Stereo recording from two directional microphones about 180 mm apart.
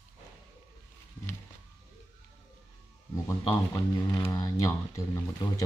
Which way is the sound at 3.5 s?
20° left (ahead or behind).